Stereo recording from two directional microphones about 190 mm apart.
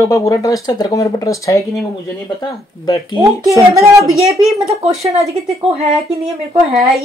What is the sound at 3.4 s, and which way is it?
Speech, 15° left (ahead or behind).